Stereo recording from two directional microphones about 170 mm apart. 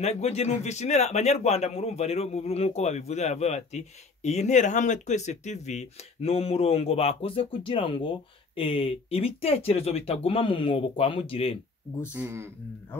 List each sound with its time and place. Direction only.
0.0 s a man's voice: 40° left (ahead or behind)
12.1 s speech: 10° right (ahead or behind)